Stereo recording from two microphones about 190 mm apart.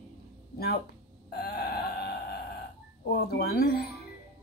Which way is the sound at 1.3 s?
55° left (ahead or behind).